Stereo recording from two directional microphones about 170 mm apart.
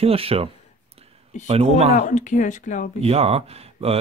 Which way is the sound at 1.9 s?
45° left (ahead or behind).